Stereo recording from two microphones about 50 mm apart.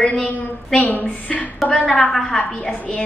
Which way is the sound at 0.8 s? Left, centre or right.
Left.